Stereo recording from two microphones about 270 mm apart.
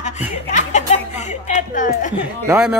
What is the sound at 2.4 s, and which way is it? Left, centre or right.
Speech, centre.